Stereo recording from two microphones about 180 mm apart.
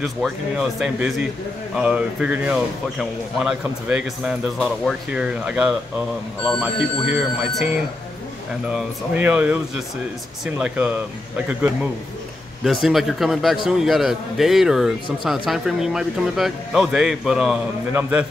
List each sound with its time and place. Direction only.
0.0 s a man's voice: centre (ahead or behind)